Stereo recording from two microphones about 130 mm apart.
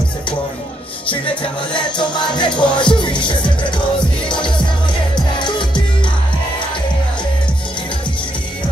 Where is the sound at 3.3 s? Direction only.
40° left (ahead or behind).